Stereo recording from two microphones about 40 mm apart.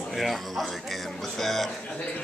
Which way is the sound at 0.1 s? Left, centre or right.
Centre.